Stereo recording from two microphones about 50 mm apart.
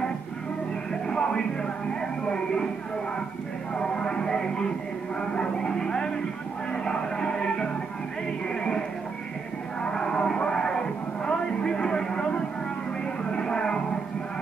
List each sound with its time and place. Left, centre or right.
1.0 s music: centre
3.7 s music: centre
5.2 s speech: centre
6.7 s music: centre
9.8 s music: centre